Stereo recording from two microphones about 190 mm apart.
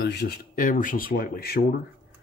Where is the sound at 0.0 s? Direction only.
60° left (ahead or behind).